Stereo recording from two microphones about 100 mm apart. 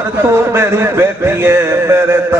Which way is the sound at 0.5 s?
25° right (ahead or behind).